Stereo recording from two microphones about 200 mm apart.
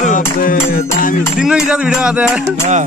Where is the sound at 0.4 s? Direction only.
45° left (ahead or behind).